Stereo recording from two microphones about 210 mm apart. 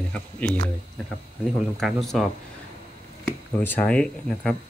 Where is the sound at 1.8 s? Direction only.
Centre (ahead or behind).